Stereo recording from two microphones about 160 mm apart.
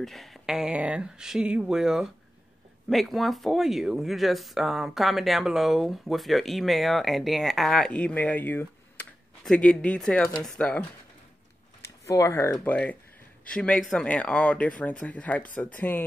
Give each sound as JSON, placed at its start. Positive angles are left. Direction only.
{"t": 0.0, "sound": "speech", "side_deg": 0}
{"t": 11.8, "sound": "a sound", "side_deg": 20}
{"t": 12.5, "sound": "speech", "side_deg": 10}